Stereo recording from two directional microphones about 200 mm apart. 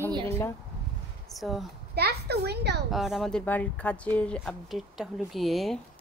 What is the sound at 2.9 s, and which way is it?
Speech, centre (ahead or behind).